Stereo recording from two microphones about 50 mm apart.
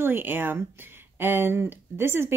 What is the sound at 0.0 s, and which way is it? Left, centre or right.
A woman's voice, right.